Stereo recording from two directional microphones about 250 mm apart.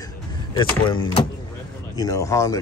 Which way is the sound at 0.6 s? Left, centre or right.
Centre.